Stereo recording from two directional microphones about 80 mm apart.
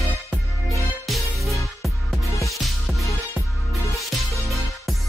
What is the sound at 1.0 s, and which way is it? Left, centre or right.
Music, centre.